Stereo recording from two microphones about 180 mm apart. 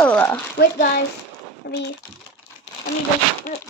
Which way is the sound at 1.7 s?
65° left (ahead or behind).